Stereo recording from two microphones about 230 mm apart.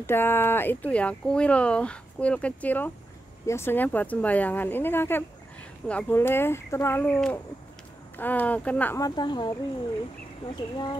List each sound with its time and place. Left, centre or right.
0.0 s a woman's voice: centre